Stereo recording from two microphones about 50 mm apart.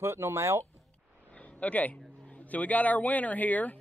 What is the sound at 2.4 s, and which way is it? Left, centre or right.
Speech, left.